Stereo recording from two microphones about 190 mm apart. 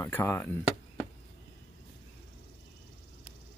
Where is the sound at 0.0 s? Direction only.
10° left (ahead or behind).